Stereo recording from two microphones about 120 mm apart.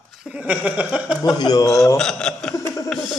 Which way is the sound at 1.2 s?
35° left (ahead or behind).